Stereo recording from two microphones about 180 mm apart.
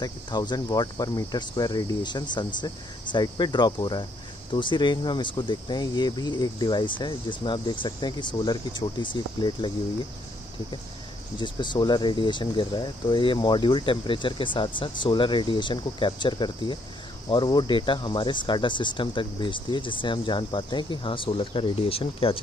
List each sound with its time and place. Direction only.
0.0 s speech: 20° left (ahead or behind)
11.3 s speech: 25° left (ahead or behind)